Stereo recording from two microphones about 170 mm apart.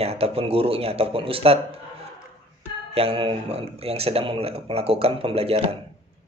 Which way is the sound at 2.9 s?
35° right (ahead or behind).